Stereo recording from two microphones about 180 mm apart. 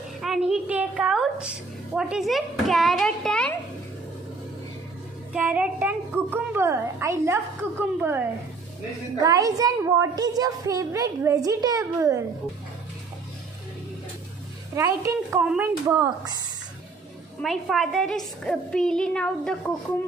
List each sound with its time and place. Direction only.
0.2 s a woman's voice: 5° right (ahead or behind)
5.3 s a child's voice: 10° right (ahead or behind)
15.4 s a child's voice: 10° right (ahead or behind)
17.4 s a woman's voice: centre (ahead or behind)